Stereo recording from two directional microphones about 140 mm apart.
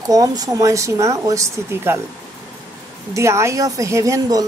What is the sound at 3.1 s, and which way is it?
Speech, 20° right (ahead or behind).